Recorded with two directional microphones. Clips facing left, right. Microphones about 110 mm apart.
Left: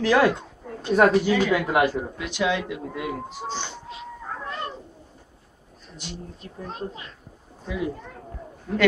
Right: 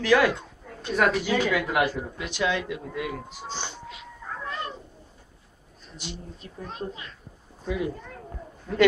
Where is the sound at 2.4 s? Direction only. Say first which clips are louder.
Left 2 dB; 20° left (ahead or behind).